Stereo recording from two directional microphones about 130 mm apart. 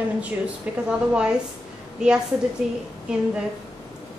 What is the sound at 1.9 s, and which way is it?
Speech, 5° right (ahead or behind).